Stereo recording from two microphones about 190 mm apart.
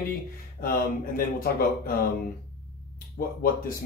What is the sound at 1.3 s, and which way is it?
Speech, 50° left (ahead or behind).